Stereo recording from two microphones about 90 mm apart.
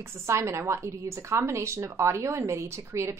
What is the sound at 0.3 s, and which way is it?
A woman's voice, 30° right (ahead or behind).